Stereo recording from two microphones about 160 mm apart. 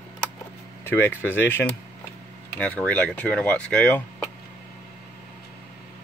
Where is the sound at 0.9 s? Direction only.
15° left (ahead or behind).